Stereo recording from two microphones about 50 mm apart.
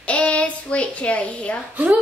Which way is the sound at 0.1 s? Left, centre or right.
Left.